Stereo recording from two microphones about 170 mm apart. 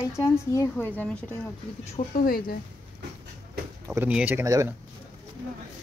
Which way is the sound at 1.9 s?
50° left (ahead or behind).